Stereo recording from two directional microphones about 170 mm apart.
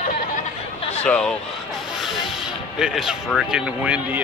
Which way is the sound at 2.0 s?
Centre (ahead or behind).